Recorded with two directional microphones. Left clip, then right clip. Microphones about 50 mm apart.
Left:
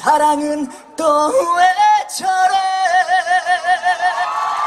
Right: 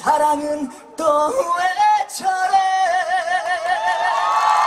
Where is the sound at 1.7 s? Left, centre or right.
Centre.